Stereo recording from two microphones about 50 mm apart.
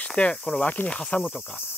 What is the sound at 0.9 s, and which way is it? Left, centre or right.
Speech, centre.